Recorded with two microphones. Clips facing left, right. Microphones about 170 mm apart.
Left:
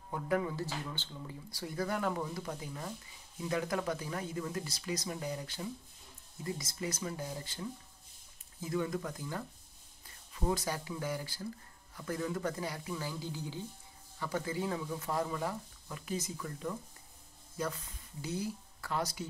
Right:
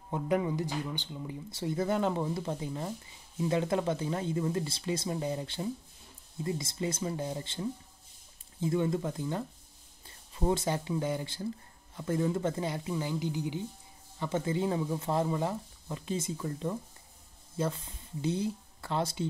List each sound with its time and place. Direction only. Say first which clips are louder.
0.1 s speech: right 4 dB; 20° right (ahead or behind)